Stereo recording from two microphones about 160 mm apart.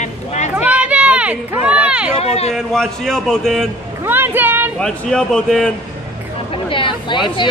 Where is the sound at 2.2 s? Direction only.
40° left (ahead or behind).